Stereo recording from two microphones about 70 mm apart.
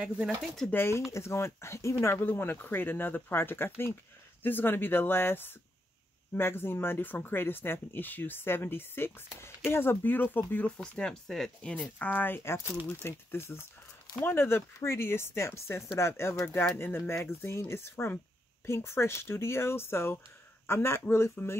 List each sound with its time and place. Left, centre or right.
0.7 s speech: left
10.8 s speech: centre
11.7 s speech: left
21.4 s speech: left